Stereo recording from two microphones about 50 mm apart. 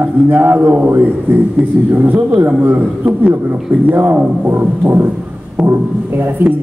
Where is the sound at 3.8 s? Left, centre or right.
Right.